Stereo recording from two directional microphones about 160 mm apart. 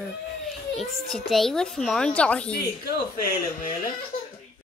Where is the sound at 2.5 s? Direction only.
70° left (ahead or behind).